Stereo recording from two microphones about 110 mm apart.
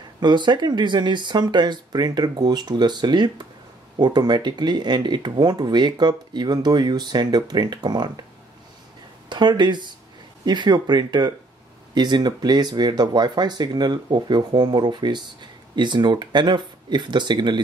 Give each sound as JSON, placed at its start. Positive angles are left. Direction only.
{"t": 0.2, "sound": "speech", "side_deg": -45}
{"t": 9.3, "sound": "speech", "side_deg": -45}